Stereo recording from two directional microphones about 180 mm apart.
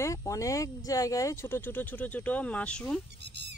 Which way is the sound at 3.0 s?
70° right (ahead or behind).